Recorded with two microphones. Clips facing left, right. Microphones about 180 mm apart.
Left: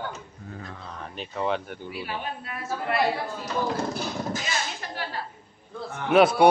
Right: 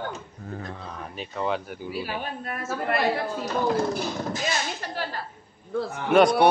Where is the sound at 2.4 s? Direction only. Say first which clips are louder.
Right 3 dB; 50° right (ahead or behind).